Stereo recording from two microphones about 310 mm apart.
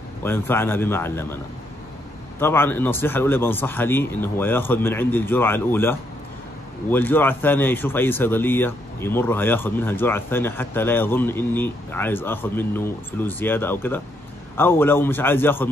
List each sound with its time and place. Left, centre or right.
0.2 s speech: centre